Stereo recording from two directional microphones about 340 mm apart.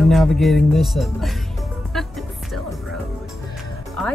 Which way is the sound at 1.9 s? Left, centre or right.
Centre.